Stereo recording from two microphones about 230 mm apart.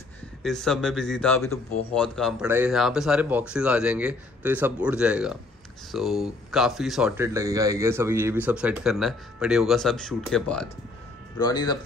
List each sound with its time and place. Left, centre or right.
0.4 s speech: centre
2.4 s speech: centre
11.3 s speech: centre